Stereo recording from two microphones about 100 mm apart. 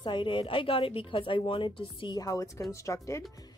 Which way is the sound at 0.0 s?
55° left (ahead or behind).